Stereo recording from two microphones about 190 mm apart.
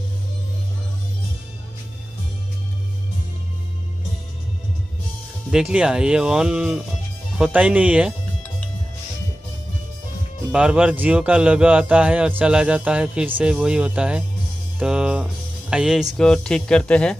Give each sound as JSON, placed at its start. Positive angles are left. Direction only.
{"t": 5.5, "sound": "speech", "side_deg": -5}
{"t": 10.5, "sound": "a man's voice", "side_deg": -5}